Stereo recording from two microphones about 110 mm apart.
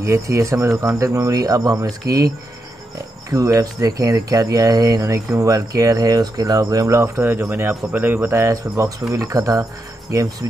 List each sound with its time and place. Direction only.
0.0 s speech: 25° right (ahead or behind)